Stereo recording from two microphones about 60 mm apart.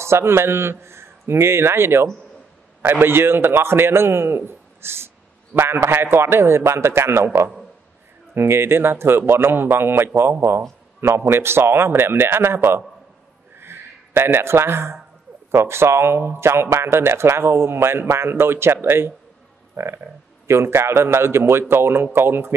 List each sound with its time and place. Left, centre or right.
0.0 s a man's voice: right
8.4 s a man's voice: right
13.6 s a sound: right
15.5 s speech: right